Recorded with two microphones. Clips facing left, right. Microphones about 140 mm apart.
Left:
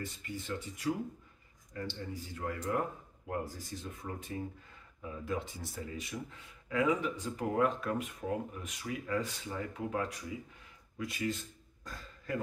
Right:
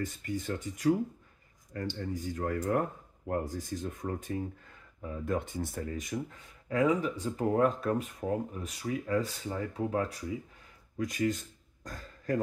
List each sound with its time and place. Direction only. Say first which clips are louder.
0.0 s speech: right 7 dB; 45° right (ahead or behind)
2.0 s speech: right 7 dB; 45° right (ahead or behind)
11.8 s throat clearing: right 5 dB; 45° right (ahead or behind)